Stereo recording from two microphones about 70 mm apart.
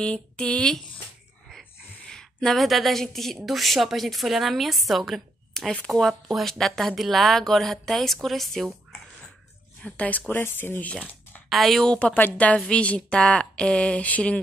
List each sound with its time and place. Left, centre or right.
0.0 s a woman's voice: centre
2.0 s a woman's voice: centre
9.8 s speech: centre
11.4 s a woman's voice: centre
11.9 s a woman's voice: left